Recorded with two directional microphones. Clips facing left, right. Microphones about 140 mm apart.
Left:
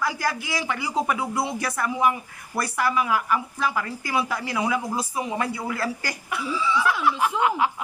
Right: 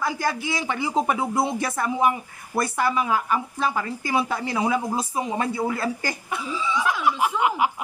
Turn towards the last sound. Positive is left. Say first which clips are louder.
# even
turn(degrees=-15)  # may be behind; listen again after turning